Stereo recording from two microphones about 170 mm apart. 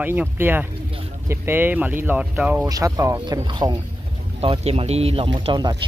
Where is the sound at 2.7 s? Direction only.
20° right (ahead or behind).